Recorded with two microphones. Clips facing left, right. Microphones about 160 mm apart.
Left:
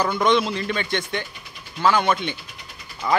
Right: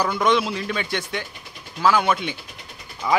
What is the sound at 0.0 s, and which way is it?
Speech, 5° right (ahead or behind).